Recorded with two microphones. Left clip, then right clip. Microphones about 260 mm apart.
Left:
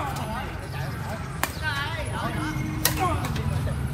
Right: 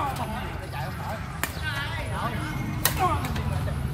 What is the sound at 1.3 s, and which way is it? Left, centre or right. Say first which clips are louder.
Clip-clop: left 4 dB; centre.